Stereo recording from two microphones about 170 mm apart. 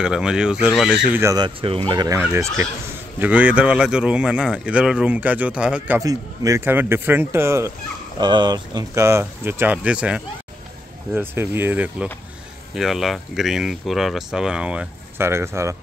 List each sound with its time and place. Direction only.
0.0 s speech: 5° right (ahead or behind)
1.3 s speech: 30° right (ahead or behind); by 5.9 s 5° right (ahead or behind)
5.9 s speech: 20° right (ahead or behind)
8.2 s speech: 25° right (ahead or behind)